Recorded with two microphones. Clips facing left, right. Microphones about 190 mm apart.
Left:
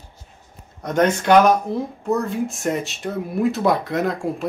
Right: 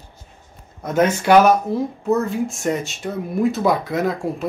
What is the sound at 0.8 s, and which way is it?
Speech, 5° right (ahead or behind).